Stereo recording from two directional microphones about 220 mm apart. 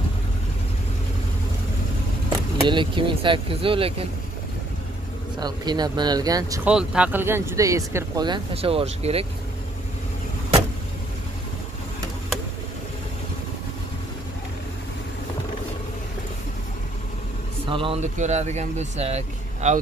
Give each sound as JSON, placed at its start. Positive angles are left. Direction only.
{"t": 2.2, "sound": "speech", "side_deg": -20}
{"t": 5.4, "sound": "speech", "side_deg": -20}
{"t": 6.7, "sound": "speech", "side_deg": -5}
{"t": 17.6, "sound": "speech", "side_deg": -25}